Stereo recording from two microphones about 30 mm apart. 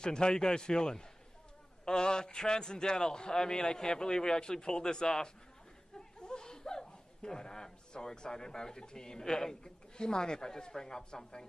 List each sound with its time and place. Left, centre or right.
0.0 s a man's voice: left